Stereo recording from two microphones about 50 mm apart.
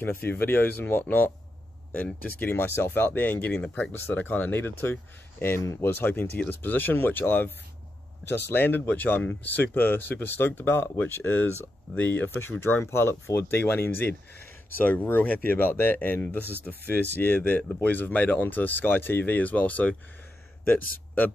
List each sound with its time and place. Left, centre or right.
0.0 s speech: left
2.2 s speech: left
5.6 s speech: left
5.9 s speech: left
12.8 s speech: left
13.5 s speech: left
14.8 s speech: left